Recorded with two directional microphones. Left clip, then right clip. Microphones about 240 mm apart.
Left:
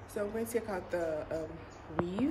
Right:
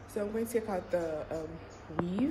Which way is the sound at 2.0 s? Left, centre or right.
Centre.